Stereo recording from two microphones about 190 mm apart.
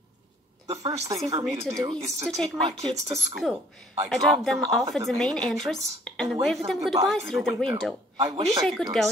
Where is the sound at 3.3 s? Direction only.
5° right (ahead or behind).